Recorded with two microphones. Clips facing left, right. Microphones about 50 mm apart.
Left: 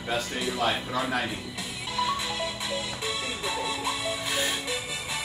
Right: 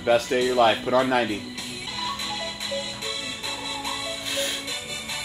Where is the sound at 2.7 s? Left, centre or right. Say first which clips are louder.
Even; centre.